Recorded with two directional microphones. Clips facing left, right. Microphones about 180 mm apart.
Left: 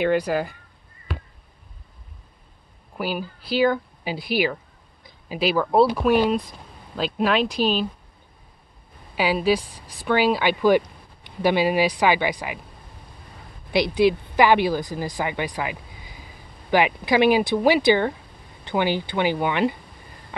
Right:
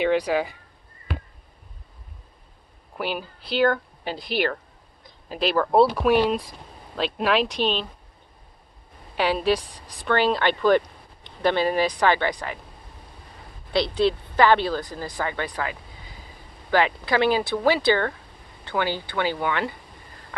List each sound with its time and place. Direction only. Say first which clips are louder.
0.0 s speech: even; centre (ahead or behind)
3.0 s speech: left 2 dB; 5° left (ahead or behind)
9.1 s a woman's voice: left 1 dB; 5° left (ahead or behind)
13.7 s a woman's voice: left 3 dB; 10° left (ahead or behind)